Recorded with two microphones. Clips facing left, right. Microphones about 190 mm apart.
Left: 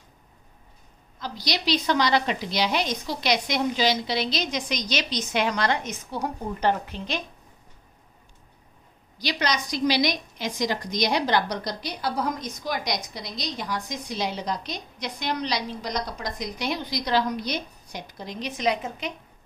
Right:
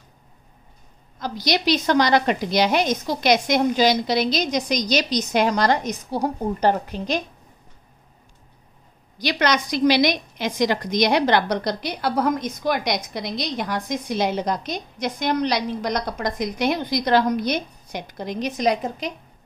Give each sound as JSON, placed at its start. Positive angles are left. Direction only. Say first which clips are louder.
{"t": 1.2, "sound": "a woman's voice", "louder": "right 6 dB", "side_deg": -50}
{"t": 9.2, "sound": "a woman's voice", "louder": "right 5 dB", "side_deg": -60}